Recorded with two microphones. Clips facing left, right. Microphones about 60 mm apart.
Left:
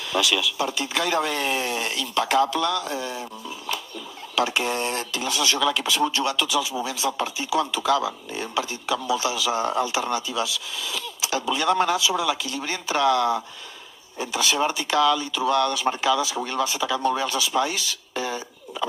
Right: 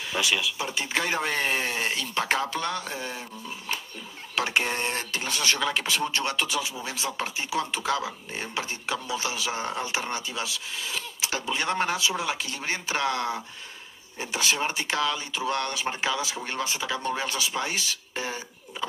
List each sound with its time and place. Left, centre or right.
0.1 s speech: right
4.4 s speech: right